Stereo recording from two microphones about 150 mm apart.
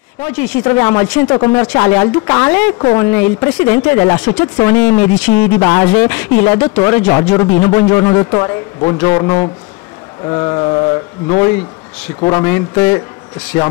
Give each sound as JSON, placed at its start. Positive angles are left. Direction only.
{"t": 0.2, "sound": "a man's voice", "side_deg": 10}